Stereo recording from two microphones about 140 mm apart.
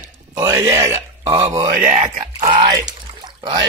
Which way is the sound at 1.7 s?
70° right (ahead or behind).